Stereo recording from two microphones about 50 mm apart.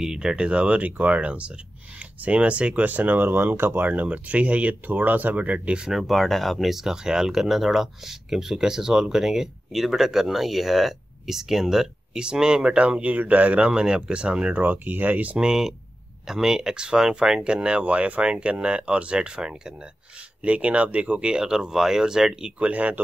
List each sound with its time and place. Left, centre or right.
0.0 s speech: centre; by 3.8 s right
3.8 s speech: right
5.9 s speech: centre; by 14.6 s right
14.6 s speech: right
15.3 s speech: centre
22.6 s speech: right